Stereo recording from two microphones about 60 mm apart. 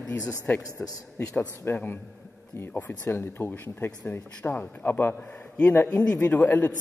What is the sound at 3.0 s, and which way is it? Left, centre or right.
Speech, left.